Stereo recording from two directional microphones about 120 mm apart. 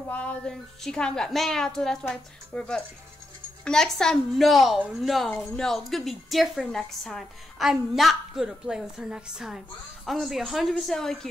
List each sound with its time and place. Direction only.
0.1 s a woman's voice: 10° left (ahead or behind)